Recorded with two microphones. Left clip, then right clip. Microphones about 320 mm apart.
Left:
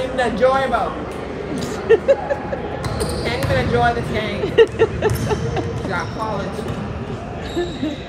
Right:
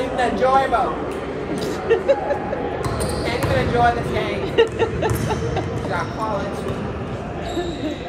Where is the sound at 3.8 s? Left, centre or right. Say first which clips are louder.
Even; left.